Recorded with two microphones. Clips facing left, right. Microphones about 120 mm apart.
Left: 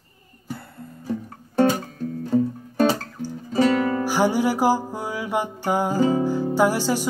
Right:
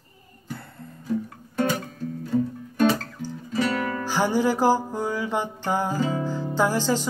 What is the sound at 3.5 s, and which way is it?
Music, 30° left (ahead or behind).